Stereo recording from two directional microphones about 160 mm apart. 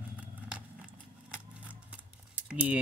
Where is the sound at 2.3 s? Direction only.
10° right (ahead or behind).